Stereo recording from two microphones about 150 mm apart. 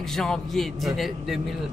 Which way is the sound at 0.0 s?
Centre (ahead or behind).